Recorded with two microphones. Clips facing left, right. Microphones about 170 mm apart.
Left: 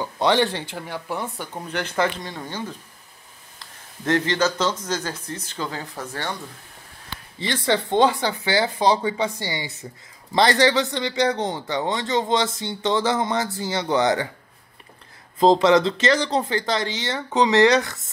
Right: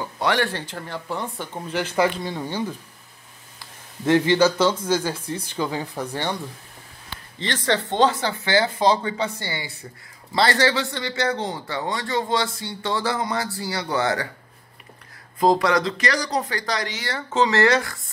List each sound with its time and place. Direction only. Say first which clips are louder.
0.2 s speech: left 3 dB; 25° left (ahead or behind); by 2.6 s 10° right (ahead or behind)
4.0 s speech: right 4 dB; 10° right (ahead or behind)
7.3 s speech: left 1 dB; 10° left (ahead or behind)
15.3 s speech: left 3 dB; 25° left (ahead or behind)